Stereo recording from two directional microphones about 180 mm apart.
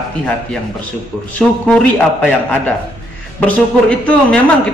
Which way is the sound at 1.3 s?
5° left (ahead or behind).